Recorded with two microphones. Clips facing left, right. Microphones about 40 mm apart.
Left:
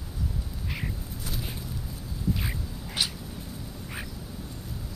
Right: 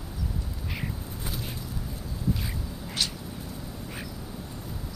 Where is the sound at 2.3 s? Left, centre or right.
Centre.